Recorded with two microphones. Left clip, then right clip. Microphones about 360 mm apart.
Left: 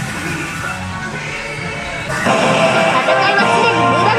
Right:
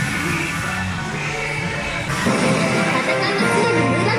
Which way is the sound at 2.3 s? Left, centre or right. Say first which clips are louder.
Left 8 dB; centre.